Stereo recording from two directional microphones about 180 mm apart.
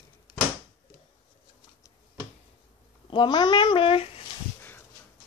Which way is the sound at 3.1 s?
25° left (ahead or behind).